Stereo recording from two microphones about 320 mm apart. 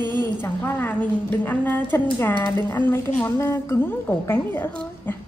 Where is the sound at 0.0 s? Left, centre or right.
Centre.